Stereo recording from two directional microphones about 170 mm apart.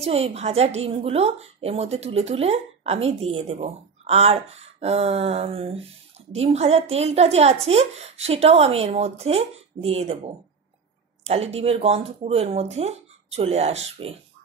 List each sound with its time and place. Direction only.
0.0 s a woman's voice: 35° right (ahead or behind)